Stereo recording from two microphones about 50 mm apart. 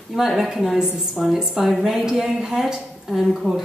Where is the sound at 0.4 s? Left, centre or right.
Centre.